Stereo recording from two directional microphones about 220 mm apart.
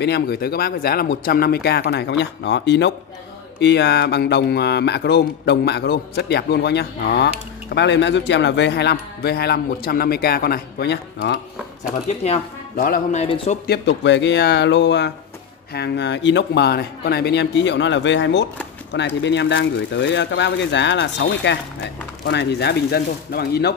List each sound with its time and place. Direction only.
0.0 s speech: 50° left (ahead or behind)
12.2 s speech: 35° left (ahead or behind)
13.7 s speech: 55° left (ahead or behind)